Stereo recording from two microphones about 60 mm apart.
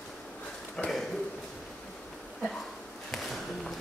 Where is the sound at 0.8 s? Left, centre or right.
Centre.